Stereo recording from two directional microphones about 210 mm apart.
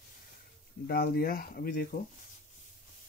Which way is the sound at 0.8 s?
45° left (ahead or behind).